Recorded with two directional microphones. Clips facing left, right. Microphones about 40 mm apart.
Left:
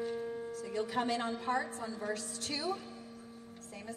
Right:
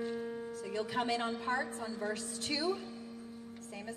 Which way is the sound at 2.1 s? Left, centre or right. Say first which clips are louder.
Right 1 dB; right.